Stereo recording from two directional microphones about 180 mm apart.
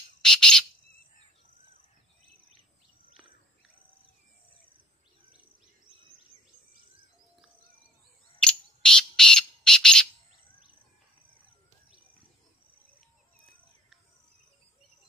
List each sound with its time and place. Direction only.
0.2 s bird: 5° left (ahead or behind)
8.4 s bird: 5° left (ahead or behind)